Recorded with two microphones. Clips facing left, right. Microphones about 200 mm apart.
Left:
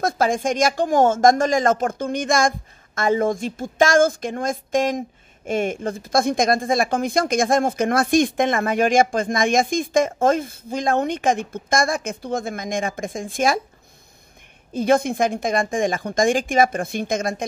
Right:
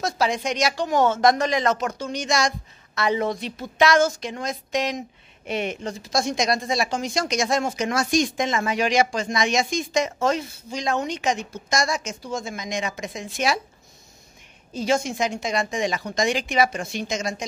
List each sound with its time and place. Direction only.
0.0 s speech: 50° left (ahead or behind)
14.7 s speech: 55° left (ahead or behind)